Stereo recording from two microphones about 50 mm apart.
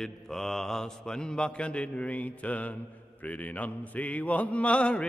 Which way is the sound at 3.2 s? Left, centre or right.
Left.